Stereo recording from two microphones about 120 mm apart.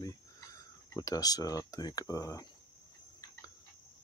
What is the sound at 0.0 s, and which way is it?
Speech, 30° left (ahead or behind).